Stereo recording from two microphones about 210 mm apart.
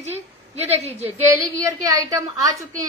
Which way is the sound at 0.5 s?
30° right (ahead or behind).